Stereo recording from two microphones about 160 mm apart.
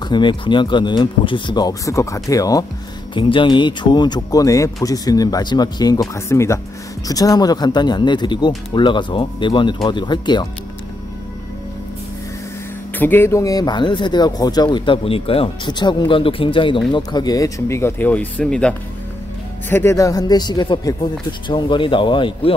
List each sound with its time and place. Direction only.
0.1 s speech: 30° left (ahead or behind)
12.9 s speech: 10° left (ahead or behind)
19.7 s speech: 15° left (ahead or behind)